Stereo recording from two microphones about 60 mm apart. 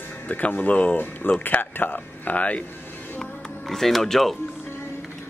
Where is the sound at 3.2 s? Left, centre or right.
Centre.